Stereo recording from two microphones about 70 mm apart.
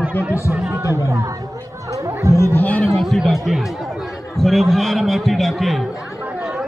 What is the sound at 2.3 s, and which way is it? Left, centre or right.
Speech, left.